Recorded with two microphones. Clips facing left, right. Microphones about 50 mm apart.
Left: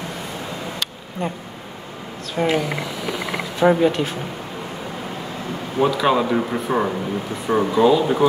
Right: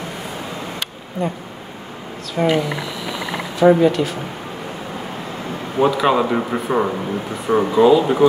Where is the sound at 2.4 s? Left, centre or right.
Centre.